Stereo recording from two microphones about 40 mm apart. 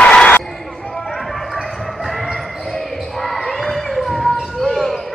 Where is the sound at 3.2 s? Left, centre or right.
Centre.